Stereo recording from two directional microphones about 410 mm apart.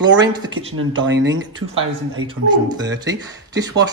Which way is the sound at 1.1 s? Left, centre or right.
Right.